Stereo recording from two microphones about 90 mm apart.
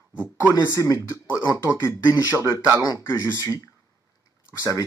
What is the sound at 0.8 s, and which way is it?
Speech, 35° left (ahead or behind).